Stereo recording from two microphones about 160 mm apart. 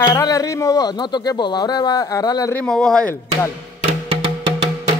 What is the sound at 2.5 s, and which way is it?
Speech, 5° left (ahead or behind).